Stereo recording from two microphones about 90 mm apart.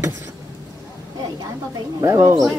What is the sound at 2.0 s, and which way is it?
Speech, 35° right (ahead or behind).